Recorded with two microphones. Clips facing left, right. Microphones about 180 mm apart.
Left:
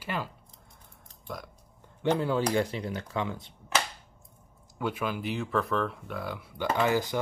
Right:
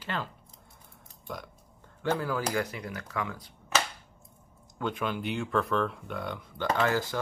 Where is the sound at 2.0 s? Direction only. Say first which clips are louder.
Left 3 dB; 20° left (ahead or behind).